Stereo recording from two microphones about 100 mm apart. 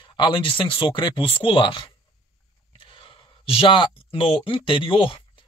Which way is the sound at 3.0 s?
70° left (ahead or behind).